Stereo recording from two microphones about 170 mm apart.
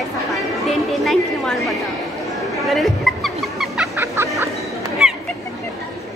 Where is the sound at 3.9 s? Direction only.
15° right (ahead or behind).